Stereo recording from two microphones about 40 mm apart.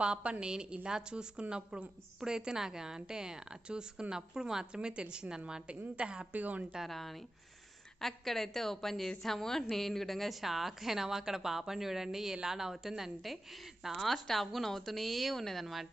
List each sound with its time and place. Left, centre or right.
0.0 s a woman's voice: right
6.3 s a woman's voice: right
6.9 s a woman's voice: centre
13.8 s a woman's voice: centre